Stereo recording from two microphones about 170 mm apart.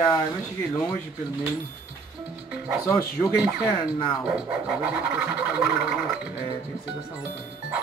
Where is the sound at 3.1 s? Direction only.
Centre (ahead or behind).